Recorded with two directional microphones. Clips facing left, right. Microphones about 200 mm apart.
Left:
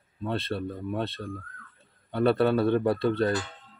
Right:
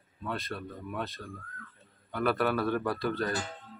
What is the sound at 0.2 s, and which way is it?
A man's voice, 30° left (ahead or behind).